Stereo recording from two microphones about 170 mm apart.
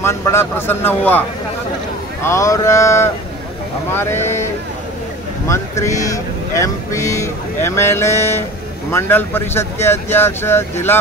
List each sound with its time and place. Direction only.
0.0 s speech: 15° left (ahead or behind)
2.2 s speech: 20° left (ahead or behind)
5.5 s speech: 15° left (ahead or behind)